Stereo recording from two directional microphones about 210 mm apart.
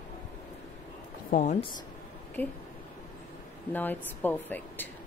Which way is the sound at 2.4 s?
10° left (ahead or behind).